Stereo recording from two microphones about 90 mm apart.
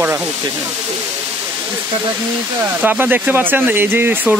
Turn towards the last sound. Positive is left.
turn(degrees=-20)  # may be behind; listen again after turning